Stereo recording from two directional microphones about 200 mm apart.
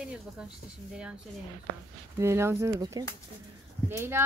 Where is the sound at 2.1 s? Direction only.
15° right (ahead or behind).